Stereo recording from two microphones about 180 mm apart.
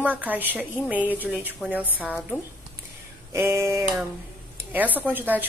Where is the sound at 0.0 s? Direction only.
10° right (ahead or behind).